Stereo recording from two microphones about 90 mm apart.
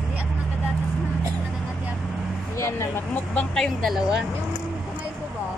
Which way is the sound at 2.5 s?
30° left (ahead or behind).